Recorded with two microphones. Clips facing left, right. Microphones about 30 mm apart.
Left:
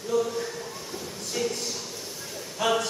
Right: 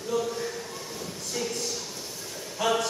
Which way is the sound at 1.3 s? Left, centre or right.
Centre.